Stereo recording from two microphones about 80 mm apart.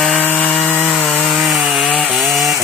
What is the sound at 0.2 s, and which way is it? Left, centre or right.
Sawing, left.